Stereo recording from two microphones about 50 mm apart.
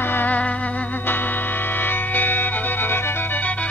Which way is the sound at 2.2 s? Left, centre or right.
Left.